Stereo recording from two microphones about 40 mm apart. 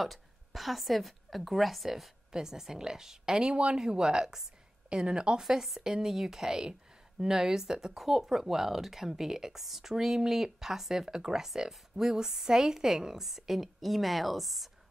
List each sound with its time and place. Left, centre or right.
0.0 s a woman's voice: centre
2.3 s a woman's voice: centre
5.4 s speech: centre